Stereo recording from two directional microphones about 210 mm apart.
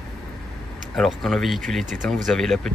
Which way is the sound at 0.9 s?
Centre (ahead or behind).